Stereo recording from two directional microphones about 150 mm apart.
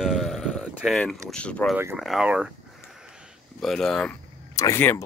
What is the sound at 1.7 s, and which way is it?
Speech, 15° right (ahead or behind).